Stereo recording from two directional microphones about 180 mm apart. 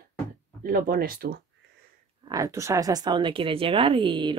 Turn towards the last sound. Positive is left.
turn(degrees=-25)  # may be behind; listen again after turning